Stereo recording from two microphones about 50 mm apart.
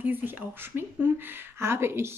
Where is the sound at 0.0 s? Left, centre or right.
Right.